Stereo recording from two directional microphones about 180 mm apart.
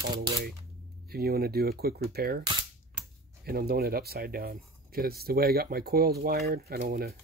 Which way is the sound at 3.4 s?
60° right (ahead or behind).